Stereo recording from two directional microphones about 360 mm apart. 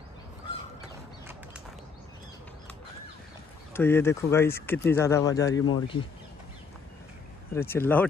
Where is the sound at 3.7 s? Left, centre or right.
Centre.